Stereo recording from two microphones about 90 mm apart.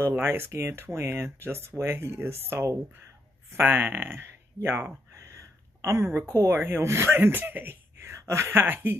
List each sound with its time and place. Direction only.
0.0 s speech: 25° right (ahead or behind)
5.2 s a sound: 35° right (ahead or behind)
6.2 s speech: 30° right (ahead or behind)